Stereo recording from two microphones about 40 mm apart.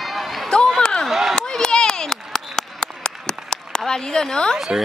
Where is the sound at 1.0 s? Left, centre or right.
Centre.